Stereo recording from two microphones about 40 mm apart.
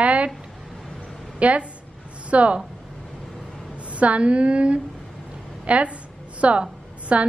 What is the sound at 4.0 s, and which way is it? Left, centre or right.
A woman's voice, right.